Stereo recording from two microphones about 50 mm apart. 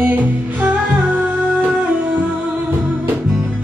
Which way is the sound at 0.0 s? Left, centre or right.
Right.